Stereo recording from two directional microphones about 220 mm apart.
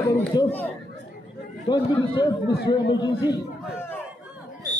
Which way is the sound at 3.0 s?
20° left (ahead or behind).